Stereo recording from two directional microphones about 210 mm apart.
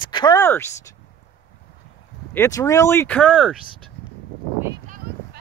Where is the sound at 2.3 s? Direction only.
15° left (ahead or behind); by 3.6 s 5° right (ahead or behind).